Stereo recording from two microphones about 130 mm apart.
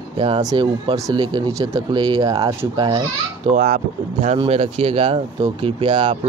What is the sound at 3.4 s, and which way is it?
Speech, 65° right (ahead or behind).